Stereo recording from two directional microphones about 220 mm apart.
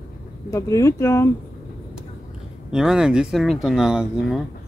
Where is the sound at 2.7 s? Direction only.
5° right (ahead or behind).